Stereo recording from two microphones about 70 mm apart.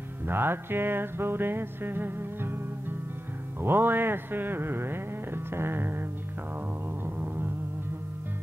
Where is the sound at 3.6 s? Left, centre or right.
Right.